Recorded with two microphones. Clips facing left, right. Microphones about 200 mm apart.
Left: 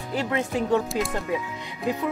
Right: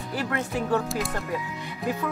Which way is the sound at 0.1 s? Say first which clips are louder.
Left 3 dB; 20° left (ahead or behind).